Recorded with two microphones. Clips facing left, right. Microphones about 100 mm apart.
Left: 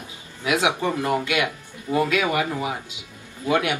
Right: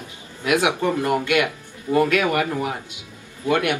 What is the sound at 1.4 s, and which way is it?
Speech, 10° left (ahead or behind).